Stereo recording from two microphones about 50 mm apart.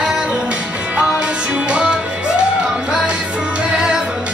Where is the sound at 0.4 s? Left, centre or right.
Right.